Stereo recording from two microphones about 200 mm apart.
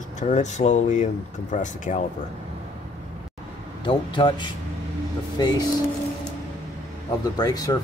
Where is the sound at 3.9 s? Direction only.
25° left (ahead or behind).